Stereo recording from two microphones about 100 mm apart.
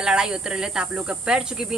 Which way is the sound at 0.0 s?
5° right (ahead or behind).